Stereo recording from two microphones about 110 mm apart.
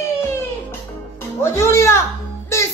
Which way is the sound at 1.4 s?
25° left (ahead or behind).